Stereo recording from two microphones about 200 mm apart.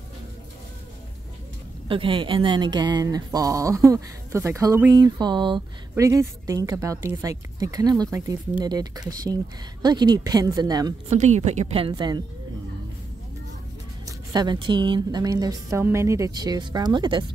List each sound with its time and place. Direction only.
1.9 s a woman's voice: 25° right (ahead or behind)
11.1 s a woman's voice: 35° right (ahead or behind)
14.0 s a woman's voice: 20° right (ahead or behind)